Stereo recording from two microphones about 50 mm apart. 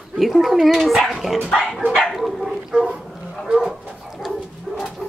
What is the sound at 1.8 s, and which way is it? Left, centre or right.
Dog, centre.